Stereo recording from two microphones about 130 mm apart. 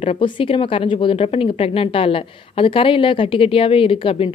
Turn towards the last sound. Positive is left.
turn(degrees=45)  # may be behind; listen again after turning